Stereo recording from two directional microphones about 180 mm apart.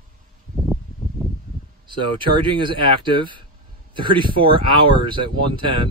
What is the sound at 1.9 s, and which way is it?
Speech, 25° right (ahead or behind).